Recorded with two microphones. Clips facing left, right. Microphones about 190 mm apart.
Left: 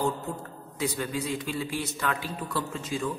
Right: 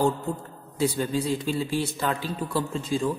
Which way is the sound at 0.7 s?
30° right (ahead or behind).